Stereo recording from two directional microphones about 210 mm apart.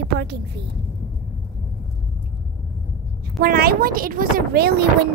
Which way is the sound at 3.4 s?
45° right (ahead or behind).